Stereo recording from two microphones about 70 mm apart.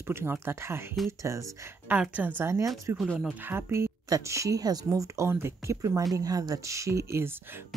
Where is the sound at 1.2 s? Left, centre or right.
Right.